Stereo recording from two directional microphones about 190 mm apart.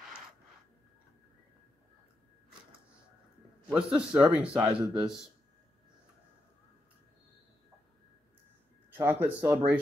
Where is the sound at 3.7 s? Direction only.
5° right (ahead or behind).